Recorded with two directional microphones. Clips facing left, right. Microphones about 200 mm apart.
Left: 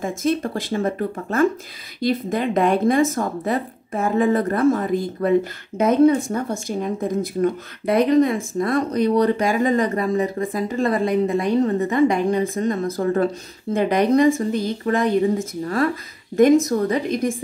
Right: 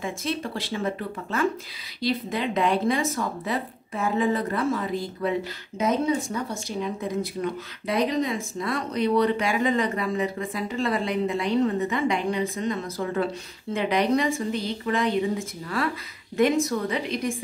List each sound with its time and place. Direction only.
0.0 s speech: 45° left (ahead or behind)